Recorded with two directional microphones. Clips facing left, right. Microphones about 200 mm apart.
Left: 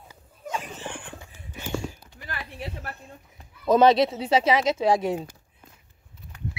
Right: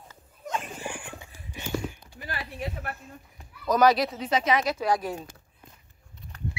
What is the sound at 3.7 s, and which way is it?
Speech, 25° left (ahead or behind).